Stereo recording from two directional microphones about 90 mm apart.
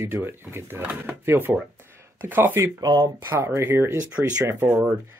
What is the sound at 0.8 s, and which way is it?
Speech, 15° right (ahead or behind).